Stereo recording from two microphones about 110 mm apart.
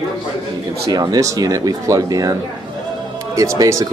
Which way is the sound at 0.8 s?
35° right (ahead or behind).